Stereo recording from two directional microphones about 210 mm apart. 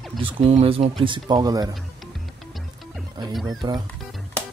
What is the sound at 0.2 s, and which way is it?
Speech, 30° right (ahead or behind).